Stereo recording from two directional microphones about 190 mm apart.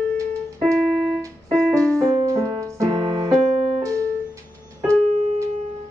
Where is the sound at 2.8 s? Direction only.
30° right (ahead or behind).